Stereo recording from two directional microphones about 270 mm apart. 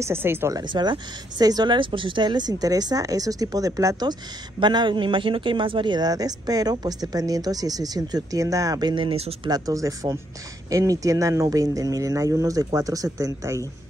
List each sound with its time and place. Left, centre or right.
0.0 s speech: centre